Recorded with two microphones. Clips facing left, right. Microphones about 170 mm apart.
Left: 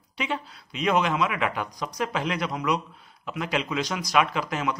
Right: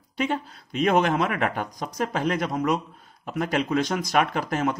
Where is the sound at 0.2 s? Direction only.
50° right (ahead or behind).